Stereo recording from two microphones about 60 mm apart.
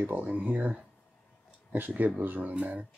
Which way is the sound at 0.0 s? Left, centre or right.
Right.